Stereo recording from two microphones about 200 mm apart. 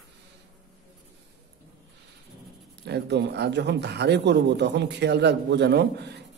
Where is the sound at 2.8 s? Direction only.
55° right (ahead or behind).